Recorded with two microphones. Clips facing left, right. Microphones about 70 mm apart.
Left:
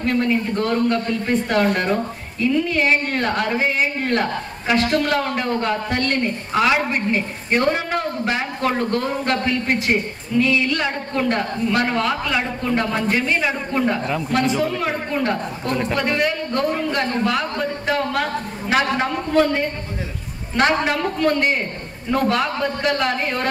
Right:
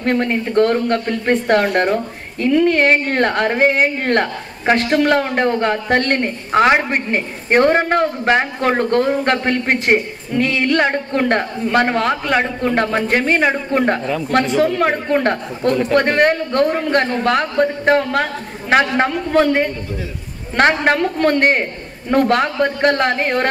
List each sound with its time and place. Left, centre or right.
0.0 s speech: right
20.5 s speech: right